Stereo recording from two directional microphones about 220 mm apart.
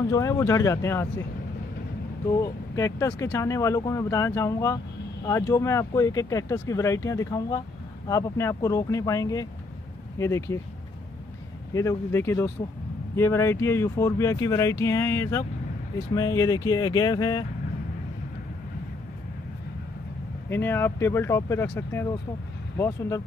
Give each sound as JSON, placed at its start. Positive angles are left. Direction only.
{"t": 0.0, "sound": "speech", "side_deg": 15}
{"t": 2.2, "sound": "speech", "side_deg": 15}
{"t": 11.7, "sound": "speech", "side_deg": 15}
{"t": 20.4, "sound": "speech", "side_deg": 10}